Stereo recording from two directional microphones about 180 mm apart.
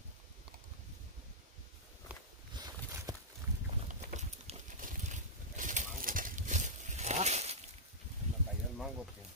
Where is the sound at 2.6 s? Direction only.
25° right (ahead or behind).